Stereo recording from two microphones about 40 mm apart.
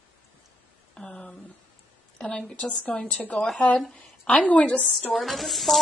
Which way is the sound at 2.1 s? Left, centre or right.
Centre.